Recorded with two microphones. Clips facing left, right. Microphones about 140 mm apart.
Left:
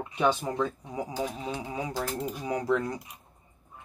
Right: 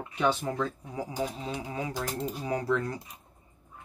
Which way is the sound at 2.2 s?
30° right (ahead or behind).